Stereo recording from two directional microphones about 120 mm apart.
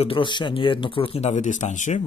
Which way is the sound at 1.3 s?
90° left.